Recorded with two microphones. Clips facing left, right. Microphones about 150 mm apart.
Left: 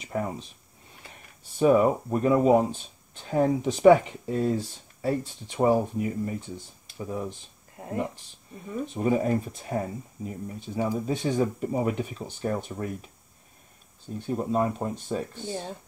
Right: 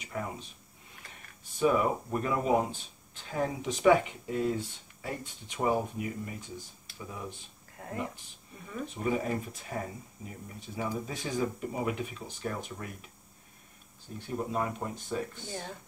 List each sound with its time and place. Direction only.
0.0 s speech: 35° left (ahead or behind)
1.6 s speech: 35° left (ahead or behind)
7.7 s a sound: 20° left (ahead or behind)
8.6 s speech: 30° left (ahead or behind)
14.2 s speech: 30° left (ahead or behind)